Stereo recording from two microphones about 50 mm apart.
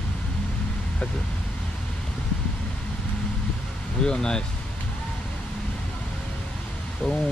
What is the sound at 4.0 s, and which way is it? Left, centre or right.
Speech, centre.